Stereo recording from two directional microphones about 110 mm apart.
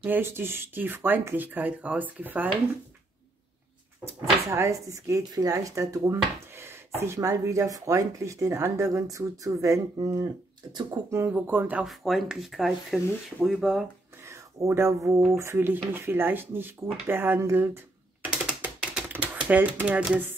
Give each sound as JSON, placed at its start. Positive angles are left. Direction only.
{"t": 0.0, "sound": "speech", "side_deg": -20}
{"t": 4.5, "sound": "speech", "side_deg": -30}
{"t": 11.1, "sound": "speech", "side_deg": -20}
{"t": 11.8, "sound": "speech", "side_deg": 0}
{"t": 14.2, "sound": "speech", "side_deg": -25}
{"t": 18.2, "sound": "ratchet", "side_deg": -10}
{"t": 19.3, "sound": "speech", "side_deg": -15}